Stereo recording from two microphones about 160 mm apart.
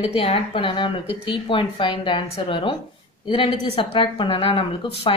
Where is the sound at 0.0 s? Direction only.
35° left (ahead or behind).